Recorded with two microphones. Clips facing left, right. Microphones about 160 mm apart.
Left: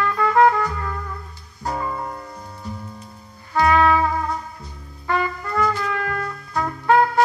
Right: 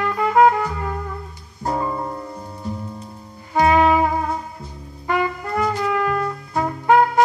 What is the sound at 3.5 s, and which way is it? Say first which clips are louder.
Trumpet: right 2 dB; 20° right (ahead or behind).